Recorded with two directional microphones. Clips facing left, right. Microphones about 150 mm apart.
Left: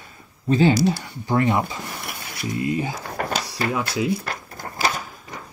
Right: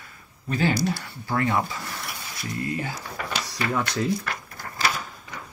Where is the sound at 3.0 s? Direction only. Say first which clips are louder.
Left 5 dB; 45° left (ahead or behind).